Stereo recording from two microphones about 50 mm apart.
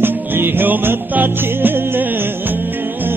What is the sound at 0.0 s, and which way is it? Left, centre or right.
Music, right.